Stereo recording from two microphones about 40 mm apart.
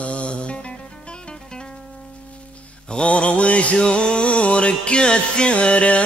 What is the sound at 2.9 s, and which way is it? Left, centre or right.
Mantra, left.